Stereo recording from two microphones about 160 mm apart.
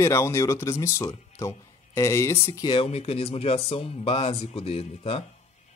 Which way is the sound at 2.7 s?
35° left (ahead or behind).